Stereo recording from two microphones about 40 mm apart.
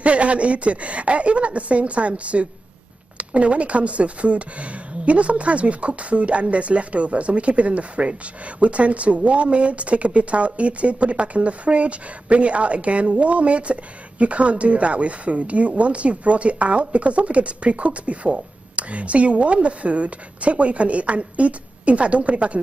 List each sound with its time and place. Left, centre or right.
0.0 s speech: right